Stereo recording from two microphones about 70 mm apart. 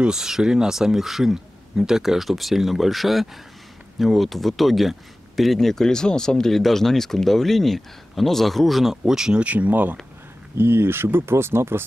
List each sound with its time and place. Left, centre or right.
0.0 s speech: centre; by 11.8 s right